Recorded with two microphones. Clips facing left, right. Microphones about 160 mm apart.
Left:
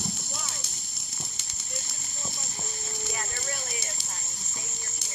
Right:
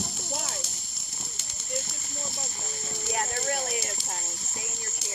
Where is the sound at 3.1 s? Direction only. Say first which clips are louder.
Right 10 dB; 50° right (ahead or behind).